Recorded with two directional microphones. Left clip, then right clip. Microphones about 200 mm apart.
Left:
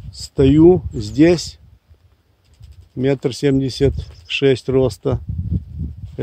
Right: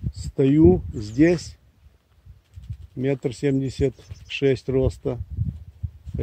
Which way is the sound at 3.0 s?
20° left (ahead or behind).